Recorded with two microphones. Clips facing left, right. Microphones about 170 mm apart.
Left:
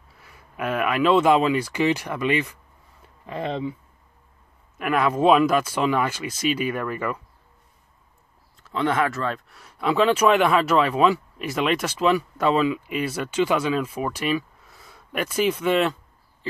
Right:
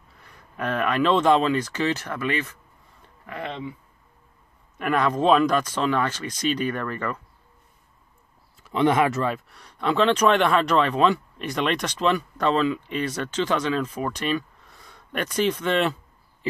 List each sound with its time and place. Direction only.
0.2 s speech: 5° left (ahead or behind)
3.3 s speech: 30° left (ahead or behind)
4.7 s speech: 5° left (ahead or behind)
8.6 s speech: 15° right (ahead or behind)
9.5 s speech: 5° left (ahead or behind)